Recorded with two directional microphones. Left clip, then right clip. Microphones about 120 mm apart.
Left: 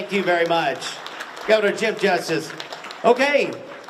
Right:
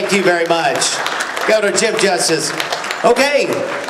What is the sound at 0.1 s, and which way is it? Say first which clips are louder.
A man's voice: right 4 dB; 45° right (ahead or behind).